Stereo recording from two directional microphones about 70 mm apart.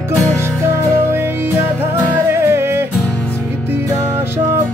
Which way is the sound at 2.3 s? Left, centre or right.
Right.